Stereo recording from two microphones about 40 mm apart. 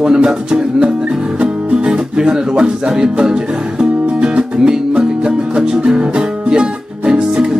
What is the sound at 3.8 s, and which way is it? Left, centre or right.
Music, right.